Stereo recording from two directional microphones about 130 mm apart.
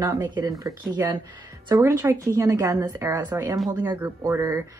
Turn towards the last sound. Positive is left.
turn(degrees=-20)  # may be behind; listen again after turning